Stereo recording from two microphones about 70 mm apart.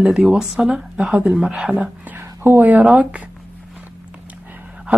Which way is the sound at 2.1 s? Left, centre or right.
Right.